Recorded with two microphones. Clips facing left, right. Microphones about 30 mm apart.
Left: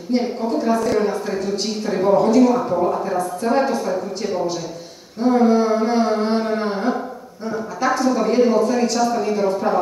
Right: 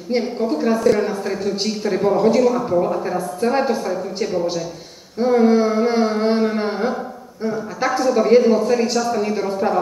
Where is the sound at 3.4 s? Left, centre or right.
Centre.